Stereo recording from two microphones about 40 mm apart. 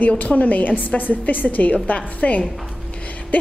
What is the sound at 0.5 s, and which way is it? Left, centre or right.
A woman's voice, left.